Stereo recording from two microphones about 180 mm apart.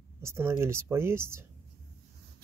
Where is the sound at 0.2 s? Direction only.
15° right (ahead or behind).